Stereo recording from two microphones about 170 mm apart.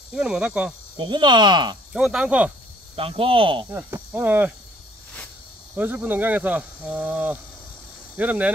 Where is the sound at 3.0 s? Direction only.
35° right (ahead or behind).